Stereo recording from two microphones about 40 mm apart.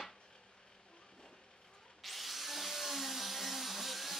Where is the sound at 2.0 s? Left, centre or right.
Centre.